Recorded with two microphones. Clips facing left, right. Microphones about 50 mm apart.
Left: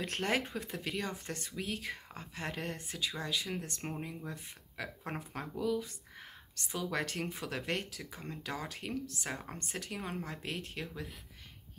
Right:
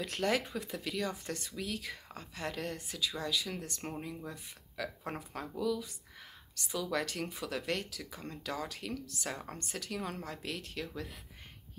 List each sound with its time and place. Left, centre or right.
0.0 s speech: left
4.8 s speech: left